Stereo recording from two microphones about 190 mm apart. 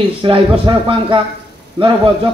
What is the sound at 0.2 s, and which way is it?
A man's voice, 25° right (ahead or behind).